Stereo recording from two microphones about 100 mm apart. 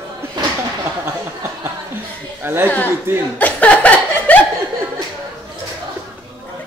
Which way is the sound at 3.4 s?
15° left (ahead or behind).